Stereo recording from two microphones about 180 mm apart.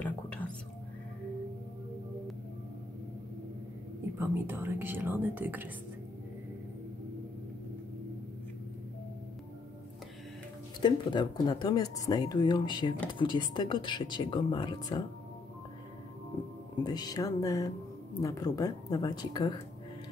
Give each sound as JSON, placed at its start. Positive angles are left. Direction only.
{"t": 0.0, "sound": "whispering", "side_deg": 10}
{"t": 4.2, "sound": "speech", "side_deg": -10}
{"t": 10.8, "sound": "speech", "side_deg": 25}
{"t": 16.8, "sound": "speech", "side_deg": 20}